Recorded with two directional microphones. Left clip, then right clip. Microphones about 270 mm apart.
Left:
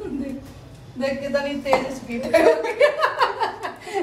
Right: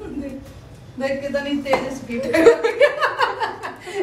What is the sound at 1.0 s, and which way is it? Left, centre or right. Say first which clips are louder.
Speech: right 1 dB; centre.